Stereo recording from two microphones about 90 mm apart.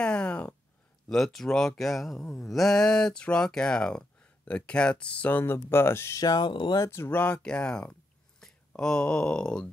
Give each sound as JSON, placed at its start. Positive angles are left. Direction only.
{"t": 0.0, "sound": "a sound", "side_deg": 10}
{"t": 1.0, "sound": "speech", "side_deg": 5}
{"t": 6.2, "sound": "speech", "side_deg": 50}
{"t": 6.9, "sound": "speech", "side_deg": 30}
{"t": 7.2, "sound": "speech", "side_deg": 15}